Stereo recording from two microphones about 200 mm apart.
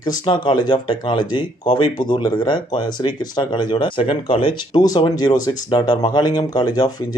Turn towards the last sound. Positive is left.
turn(degrees=20)  # may be behind; listen again after turning